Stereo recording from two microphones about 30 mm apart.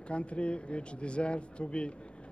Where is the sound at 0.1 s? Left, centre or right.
Left.